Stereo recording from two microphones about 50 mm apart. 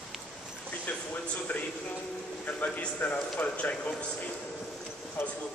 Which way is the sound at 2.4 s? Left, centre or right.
Left.